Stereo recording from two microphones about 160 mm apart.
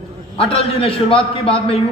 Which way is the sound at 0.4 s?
35° left (ahead or behind).